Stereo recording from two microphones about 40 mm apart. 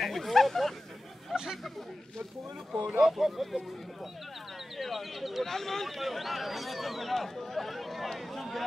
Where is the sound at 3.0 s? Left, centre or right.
Centre.